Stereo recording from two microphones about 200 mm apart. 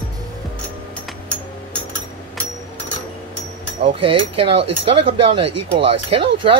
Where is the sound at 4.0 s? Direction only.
25° right (ahead or behind).